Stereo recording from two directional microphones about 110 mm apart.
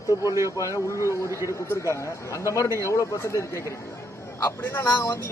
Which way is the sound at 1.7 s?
25° left (ahead or behind).